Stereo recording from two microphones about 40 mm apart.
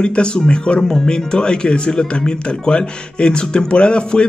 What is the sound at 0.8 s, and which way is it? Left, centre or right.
Speech, centre.